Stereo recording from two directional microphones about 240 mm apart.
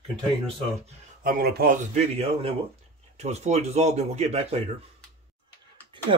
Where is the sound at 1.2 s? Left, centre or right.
Right.